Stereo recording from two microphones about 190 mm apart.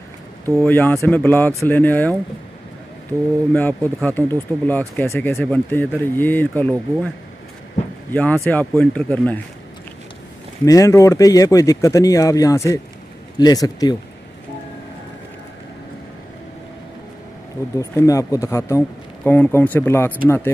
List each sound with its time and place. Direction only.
0.7 s speech: 10° left (ahead or behind)
3.5 s speech: 10° left (ahead or behind)
8.1 s speech: 10° left (ahead or behind)
10.6 s speech: 15° left (ahead or behind)
17.7 s speech: 15° left (ahead or behind)